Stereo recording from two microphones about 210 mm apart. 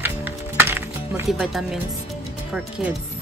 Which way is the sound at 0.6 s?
10° right (ahead or behind).